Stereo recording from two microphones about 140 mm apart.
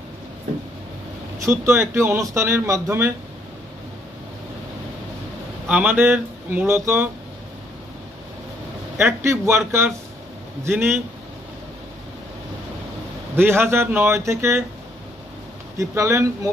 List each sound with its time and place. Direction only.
1.4 s speech: 15° right (ahead or behind)
5.7 s speech: 10° right (ahead or behind)
8.9 s speech: 20° right (ahead or behind)
13.4 s speech: 15° right (ahead or behind)
15.8 s speech: 20° right (ahead or behind)